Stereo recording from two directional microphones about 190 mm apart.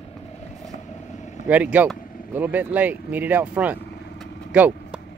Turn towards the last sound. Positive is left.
turn(degrees=-10)  # may be behind; listen again after turning